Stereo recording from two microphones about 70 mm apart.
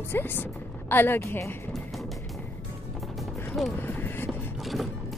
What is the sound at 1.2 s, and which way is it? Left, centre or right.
Speech, left.